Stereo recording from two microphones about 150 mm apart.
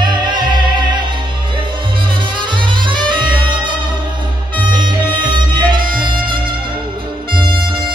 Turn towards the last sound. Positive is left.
turn(degrees=-35)  # may be behind; listen again after turning